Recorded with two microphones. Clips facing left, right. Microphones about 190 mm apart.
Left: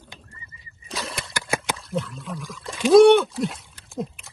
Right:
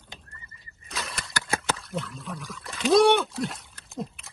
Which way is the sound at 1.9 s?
Centre (ahead or behind).